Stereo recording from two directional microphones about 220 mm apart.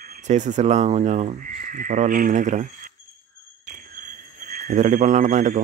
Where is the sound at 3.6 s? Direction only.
35° right (ahead or behind).